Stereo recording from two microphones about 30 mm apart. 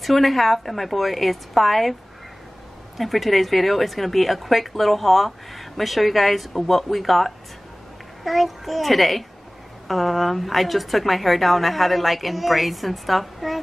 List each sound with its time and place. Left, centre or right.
0.0 s speech: centre
3.0 s speech: centre